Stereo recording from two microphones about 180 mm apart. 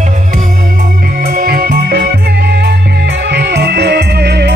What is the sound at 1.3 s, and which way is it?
Music, 55° right (ahead or behind).